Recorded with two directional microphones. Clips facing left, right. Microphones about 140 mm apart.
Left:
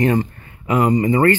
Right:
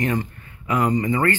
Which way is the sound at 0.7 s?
20° left (ahead or behind).